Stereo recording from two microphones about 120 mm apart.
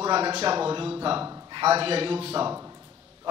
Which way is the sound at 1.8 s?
50° right (ahead or behind).